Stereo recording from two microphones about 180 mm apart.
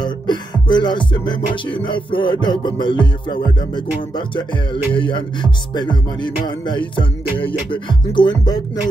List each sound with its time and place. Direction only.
0.0 s music: 25° left (ahead or behind)
4.9 s music: 25° left (ahead or behind)